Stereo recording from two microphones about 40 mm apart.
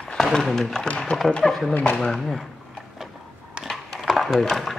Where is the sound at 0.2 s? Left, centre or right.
Centre.